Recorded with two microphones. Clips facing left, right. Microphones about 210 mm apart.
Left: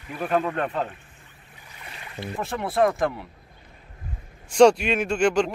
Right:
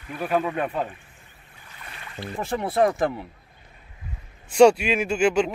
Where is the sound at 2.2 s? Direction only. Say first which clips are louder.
Left 1 dB; 20° left (ahead or behind).